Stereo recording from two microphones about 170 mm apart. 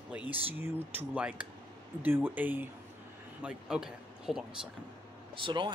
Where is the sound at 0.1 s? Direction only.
10° right (ahead or behind).